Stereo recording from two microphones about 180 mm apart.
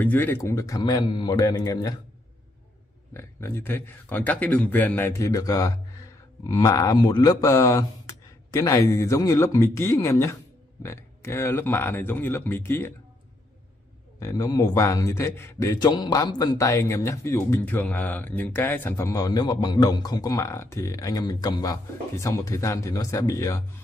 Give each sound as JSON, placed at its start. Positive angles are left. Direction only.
{"t": 0.0, "sound": "a man's voice", "side_deg": 10}
{"t": 3.1, "sound": "speech", "side_deg": 15}
{"t": 14.2, "sound": "speech", "side_deg": 20}